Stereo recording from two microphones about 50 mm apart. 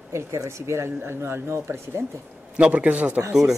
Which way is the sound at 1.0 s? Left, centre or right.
Right.